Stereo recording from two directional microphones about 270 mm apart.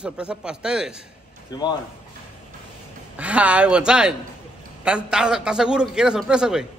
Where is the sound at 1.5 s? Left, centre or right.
Centre.